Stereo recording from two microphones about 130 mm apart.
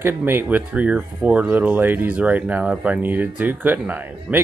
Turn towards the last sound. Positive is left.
turn(degrees=-15)  # may be behind; listen again after turning